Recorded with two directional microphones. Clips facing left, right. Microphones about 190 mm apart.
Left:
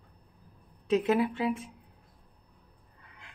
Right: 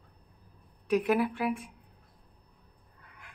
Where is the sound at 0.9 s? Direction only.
25° left (ahead or behind).